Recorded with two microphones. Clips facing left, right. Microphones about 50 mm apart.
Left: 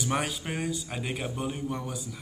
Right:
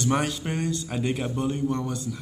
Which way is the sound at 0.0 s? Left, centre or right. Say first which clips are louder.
Right 5 dB; centre.